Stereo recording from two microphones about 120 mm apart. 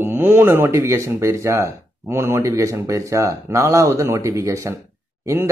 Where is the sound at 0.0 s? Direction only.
20° right (ahead or behind).